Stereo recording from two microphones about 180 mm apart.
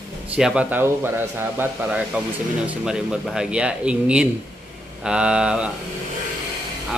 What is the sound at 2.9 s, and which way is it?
Speech, 5° right (ahead or behind).